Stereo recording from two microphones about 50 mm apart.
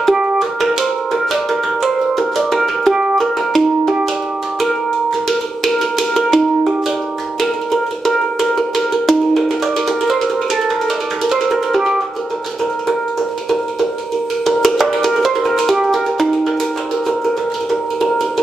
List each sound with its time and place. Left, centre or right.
0.4 s music: centre
2.9 s music: right
3.2 s music: centre
5.6 s music: centre
7.7 s music: centre
11.2 s music: centre
14.4 s music: centre
17.6 s music: centre